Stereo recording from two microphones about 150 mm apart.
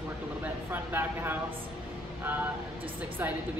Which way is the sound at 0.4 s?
15° right (ahead or behind).